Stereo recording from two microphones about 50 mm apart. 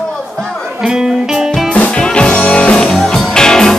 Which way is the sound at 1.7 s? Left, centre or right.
Left.